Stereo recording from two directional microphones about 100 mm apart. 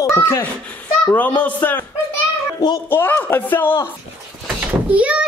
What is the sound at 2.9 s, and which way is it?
Speech, 20° left (ahead or behind).